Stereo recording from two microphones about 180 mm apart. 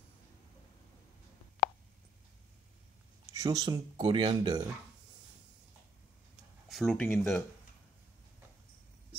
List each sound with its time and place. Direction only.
3.3 s speech: 20° right (ahead or behind)
6.7 s speech: centre (ahead or behind)